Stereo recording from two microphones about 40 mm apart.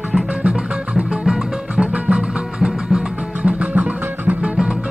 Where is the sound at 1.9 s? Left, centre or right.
Right.